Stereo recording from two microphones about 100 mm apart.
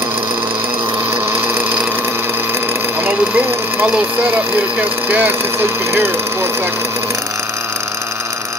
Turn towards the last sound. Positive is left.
turn(degrees=-25)  # may be behind; listen again after turning